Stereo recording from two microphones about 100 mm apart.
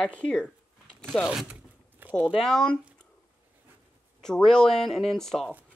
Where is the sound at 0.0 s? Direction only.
10° left (ahead or behind).